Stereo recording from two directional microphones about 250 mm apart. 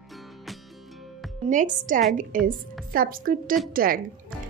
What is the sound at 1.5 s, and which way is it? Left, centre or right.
A woman's voice, right.